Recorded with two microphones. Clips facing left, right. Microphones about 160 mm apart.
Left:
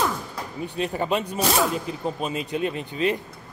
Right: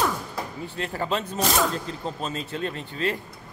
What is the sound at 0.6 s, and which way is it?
Speech, 15° left (ahead or behind).